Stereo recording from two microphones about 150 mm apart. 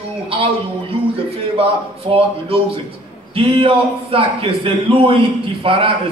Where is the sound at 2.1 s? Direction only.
35° right (ahead or behind).